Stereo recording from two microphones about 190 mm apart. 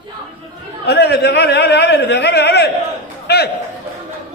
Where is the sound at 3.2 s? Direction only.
60° left (ahead or behind).